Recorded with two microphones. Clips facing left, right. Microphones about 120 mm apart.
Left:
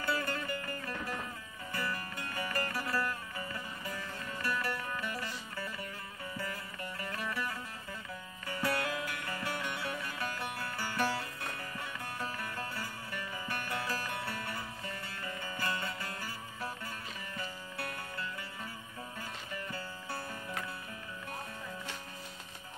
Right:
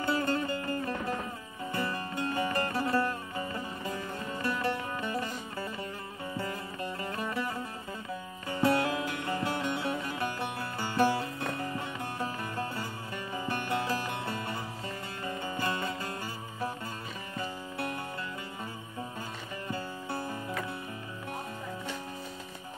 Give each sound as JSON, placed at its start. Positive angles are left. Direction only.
{"t": 0.0, "sound": "music", "side_deg": -25}
{"t": 6.3, "sound": "music", "side_deg": -25}
{"t": 17.4, "sound": "music", "side_deg": -25}
{"t": 19.7, "sound": "music", "side_deg": -25}